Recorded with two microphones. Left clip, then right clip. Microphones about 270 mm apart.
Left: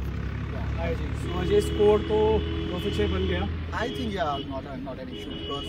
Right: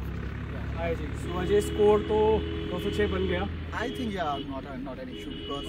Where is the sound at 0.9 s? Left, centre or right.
Left.